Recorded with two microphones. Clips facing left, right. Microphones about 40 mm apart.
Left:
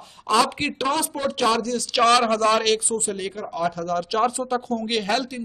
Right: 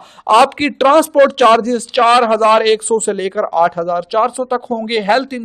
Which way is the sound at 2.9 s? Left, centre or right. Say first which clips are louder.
Right 11 dB; right.